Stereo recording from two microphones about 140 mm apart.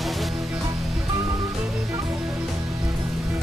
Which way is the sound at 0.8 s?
Centre (ahead or behind).